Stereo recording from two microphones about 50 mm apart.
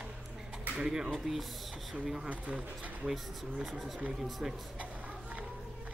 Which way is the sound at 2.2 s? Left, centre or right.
Right.